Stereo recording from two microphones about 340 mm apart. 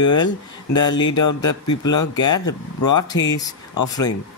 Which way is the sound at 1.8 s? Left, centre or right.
Left.